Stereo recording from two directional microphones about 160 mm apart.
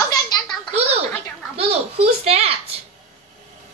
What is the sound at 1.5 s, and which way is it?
A child's voice, 40° right (ahead or behind).